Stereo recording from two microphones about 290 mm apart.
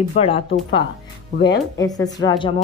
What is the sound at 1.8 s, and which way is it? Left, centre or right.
Speech, centre.